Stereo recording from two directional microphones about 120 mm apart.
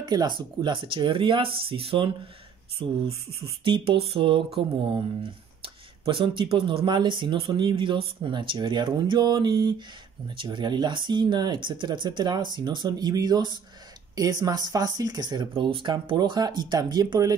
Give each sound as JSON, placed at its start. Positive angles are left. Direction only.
{"t": 0.0, "sound": "speech", "side_deg": -35}
{"t": 5.6, "sound": "speech", "side_deg": -45}